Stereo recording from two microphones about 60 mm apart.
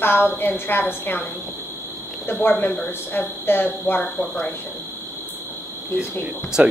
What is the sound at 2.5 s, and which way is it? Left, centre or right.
A woman's voice, left.